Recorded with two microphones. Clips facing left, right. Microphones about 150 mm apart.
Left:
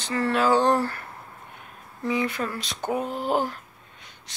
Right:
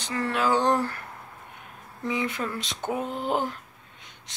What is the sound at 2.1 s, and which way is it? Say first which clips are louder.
Speech: left 2 dB; 20° right (ahead or behind).